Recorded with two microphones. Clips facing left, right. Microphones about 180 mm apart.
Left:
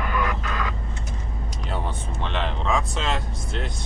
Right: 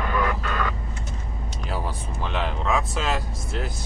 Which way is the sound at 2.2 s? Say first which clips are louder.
Even; 5° right (ahead or behind).